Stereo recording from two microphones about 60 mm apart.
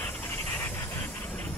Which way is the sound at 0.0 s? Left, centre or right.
Left.